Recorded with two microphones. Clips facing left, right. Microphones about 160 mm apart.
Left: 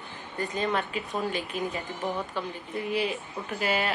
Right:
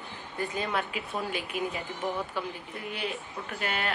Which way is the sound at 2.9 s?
Centre (ahead or behind).